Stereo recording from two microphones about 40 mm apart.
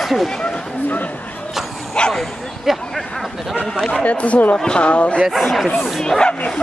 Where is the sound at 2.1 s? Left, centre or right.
Centre.